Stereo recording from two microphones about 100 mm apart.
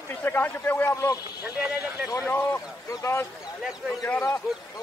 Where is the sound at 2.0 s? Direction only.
25° left (ahead or behind).